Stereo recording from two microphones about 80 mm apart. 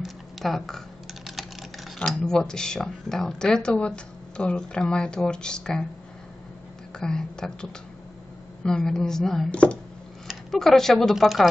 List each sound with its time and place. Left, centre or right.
0.0 s typing: centre
2.0 s speech: centre
7.0 s speech: centre
8.6 s speech: centre
9.5 s speech: centre
10.5 s speech: centre